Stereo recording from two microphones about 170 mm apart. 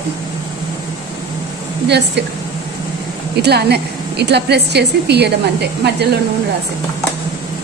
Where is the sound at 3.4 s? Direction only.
75° right (ahead or behind).